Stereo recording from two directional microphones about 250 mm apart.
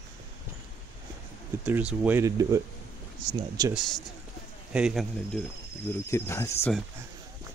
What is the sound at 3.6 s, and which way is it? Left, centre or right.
Speech, centre.